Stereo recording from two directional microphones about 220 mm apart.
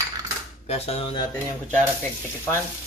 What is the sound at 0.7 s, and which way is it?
Cutlery, 25° left (ahead or behind).